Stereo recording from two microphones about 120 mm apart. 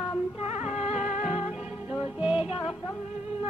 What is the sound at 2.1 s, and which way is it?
Music, 10° right (ahead or behind).